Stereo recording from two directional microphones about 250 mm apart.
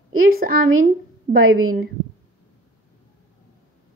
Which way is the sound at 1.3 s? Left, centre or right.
Right.